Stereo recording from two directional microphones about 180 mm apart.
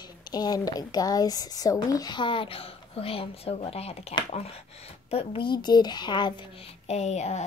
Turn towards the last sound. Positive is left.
turn(degrees=40)  # may be behind; listen again after turning